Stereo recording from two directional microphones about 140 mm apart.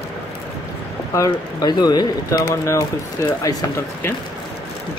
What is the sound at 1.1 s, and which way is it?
Speech, 25° left (ahead or behind).